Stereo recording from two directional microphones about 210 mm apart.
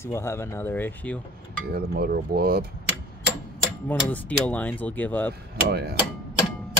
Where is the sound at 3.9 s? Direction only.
5° left (ahead or behind).